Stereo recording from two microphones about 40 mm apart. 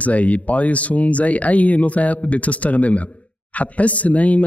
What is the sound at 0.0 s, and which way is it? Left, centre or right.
Speech, left.